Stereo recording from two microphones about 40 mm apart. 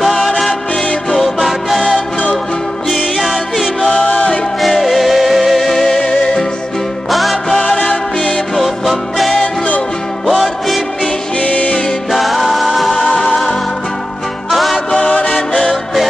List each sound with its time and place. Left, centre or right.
0.0 s music: centre
3.2 s music: centre
3.9 s music: left
4.6 s music: centre
7.1 s music: centre
7.5 s music: centre
8.5 s music: centre
11.4 s music: left
12.1 s music: centre
15.0 s music: centre
15.7 s music: centre